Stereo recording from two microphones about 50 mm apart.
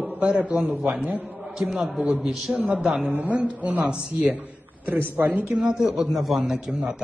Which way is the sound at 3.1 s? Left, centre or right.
Right.